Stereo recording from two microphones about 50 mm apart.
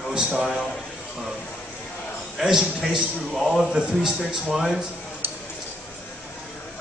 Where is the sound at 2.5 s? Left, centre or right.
Centre.